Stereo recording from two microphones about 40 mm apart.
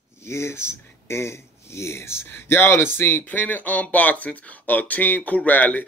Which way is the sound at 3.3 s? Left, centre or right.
Left.